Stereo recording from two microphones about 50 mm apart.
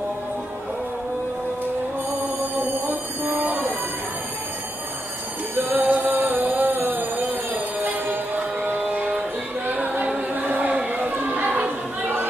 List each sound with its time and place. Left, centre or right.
2.7 s train: right
5.6 s music: right
8.9 s music: right
9.7 s a capella: right
10.4 s vehicle: right
10.9 s a sound: right